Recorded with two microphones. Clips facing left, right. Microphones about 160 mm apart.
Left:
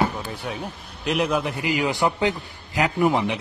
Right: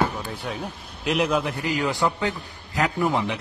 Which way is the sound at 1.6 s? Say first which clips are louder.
Left 1 dB; 15° left (ahead or behind).